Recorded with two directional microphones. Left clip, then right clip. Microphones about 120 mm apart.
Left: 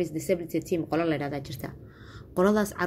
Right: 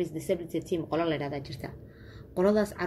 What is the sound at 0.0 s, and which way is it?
A woman's voice, 45° left (ahead or behind).